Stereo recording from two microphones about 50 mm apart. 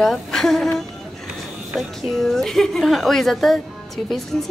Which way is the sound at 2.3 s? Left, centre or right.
Centre.